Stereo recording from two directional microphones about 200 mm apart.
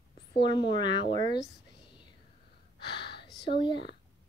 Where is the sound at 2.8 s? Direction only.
25° left (ahead or behind).